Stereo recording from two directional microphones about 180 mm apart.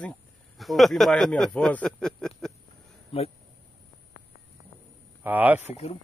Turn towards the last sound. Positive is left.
turn(degrees=35)  # may be behind; listen again after turning